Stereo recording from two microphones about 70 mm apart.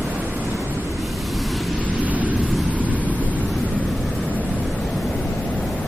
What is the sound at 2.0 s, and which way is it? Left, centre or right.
Vehicle, right.